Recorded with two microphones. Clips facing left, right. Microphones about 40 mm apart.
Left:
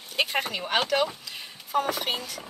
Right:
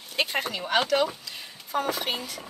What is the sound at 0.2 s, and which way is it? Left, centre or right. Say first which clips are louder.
A woman's voice: left 1 dB; centre.